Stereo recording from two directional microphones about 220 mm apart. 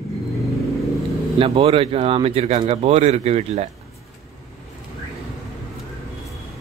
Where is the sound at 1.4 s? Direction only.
25° right (ahead or behind).